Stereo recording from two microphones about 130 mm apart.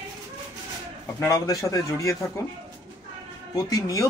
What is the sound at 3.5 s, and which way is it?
Speech, 25° left (ahead or behind).